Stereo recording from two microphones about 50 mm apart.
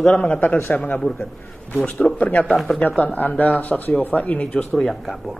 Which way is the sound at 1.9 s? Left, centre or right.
Left.